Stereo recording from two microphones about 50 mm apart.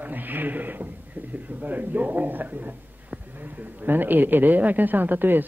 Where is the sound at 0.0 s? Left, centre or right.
Right.